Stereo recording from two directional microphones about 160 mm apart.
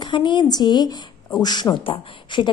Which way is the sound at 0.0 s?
30° left (ahead or behind).